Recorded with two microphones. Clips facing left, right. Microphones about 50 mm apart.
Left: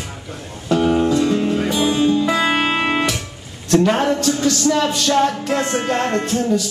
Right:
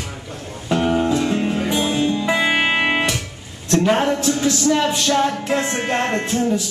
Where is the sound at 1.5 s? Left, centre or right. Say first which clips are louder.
Left 2 dB; centre.